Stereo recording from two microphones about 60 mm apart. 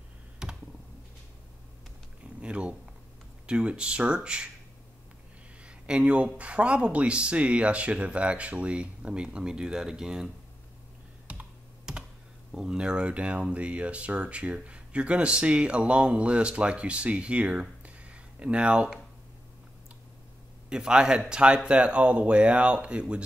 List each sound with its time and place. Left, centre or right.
0.4 s computer keyboard: centre
2.4 s a sound: centre
3.4 s speech: centre
5.6 s speech: centre
11.3 s computer keyboard: right
11.9 s computer keyboard: centre
12.5 s speech: centre
20.7 s speech: centre